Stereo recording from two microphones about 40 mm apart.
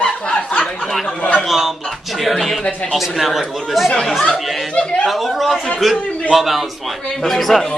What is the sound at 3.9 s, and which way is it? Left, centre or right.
Speech, centre.